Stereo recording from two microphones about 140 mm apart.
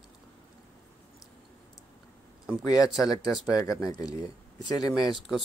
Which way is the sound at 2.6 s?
25° left (ahead or behind).